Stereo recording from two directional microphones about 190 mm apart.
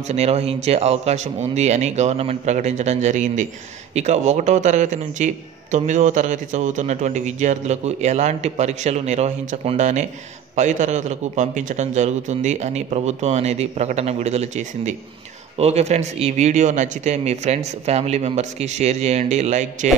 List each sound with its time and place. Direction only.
0.1 s a man's voice: 35° right (ahead or behind)